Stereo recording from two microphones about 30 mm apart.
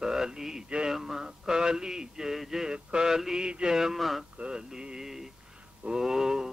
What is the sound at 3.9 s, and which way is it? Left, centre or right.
Speech, centre.